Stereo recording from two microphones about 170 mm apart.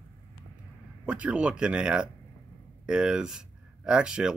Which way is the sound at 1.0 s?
5° right (ahead or behind).